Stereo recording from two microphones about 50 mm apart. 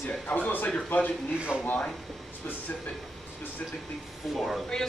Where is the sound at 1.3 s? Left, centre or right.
Right.